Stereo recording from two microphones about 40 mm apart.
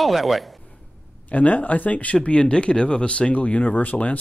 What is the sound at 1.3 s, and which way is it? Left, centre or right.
Speech, left.